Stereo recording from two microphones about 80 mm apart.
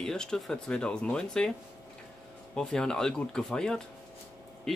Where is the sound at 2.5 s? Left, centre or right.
Centre.